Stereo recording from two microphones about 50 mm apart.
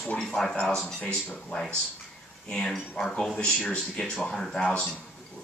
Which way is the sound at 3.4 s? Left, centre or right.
Left.